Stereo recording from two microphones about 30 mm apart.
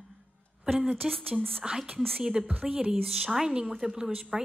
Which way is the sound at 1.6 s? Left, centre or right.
Right.